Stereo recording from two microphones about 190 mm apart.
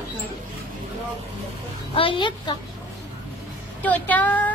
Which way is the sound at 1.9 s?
25° left (ahead or behind).